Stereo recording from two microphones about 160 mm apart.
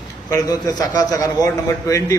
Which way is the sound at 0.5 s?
25° left (ahead or behind).